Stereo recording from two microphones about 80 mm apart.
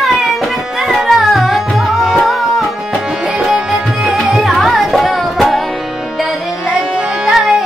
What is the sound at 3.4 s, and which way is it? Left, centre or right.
Music, centre.